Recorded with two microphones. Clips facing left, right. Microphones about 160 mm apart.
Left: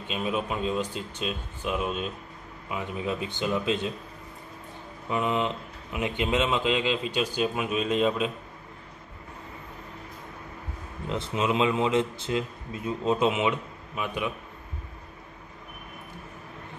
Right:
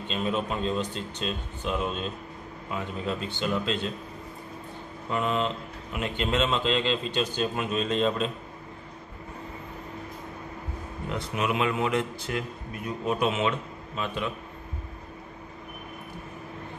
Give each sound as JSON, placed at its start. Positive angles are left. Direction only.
{"t": 0.1, "sound": "speech", "side_deg": 10}
{"t": 5.1, "sound": "speech", "side_deg": 15}
{"t": 11.1, "sound": "speech", "side_deg": 25}